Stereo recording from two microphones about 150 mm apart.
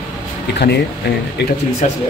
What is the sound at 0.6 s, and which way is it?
Speech, 90° left.